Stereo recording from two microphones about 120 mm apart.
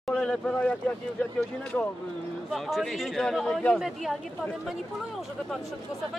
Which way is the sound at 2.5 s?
Centre (ahead or behind).